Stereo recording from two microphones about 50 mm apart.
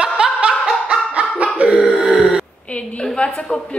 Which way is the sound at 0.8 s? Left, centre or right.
Right.